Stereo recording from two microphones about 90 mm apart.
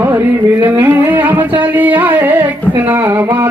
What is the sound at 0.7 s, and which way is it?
Music, 20° right (ahead or behind).